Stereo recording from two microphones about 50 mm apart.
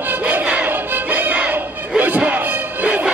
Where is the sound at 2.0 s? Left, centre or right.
Right.